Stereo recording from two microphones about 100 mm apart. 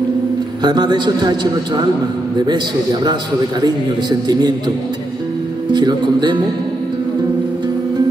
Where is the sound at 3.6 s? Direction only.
45° right (ahead or behind).